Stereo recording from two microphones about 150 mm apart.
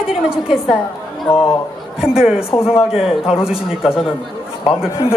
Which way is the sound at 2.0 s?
5° right (ahead or behind).